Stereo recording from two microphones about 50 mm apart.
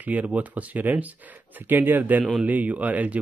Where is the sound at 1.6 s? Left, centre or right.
Right.